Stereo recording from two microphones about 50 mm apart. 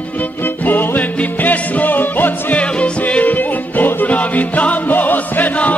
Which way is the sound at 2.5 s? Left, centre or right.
Left.